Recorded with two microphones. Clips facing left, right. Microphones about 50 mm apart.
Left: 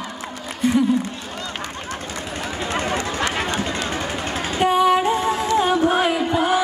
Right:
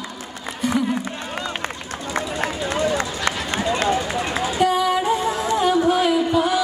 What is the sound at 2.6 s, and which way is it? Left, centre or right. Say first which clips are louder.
Run: even; left.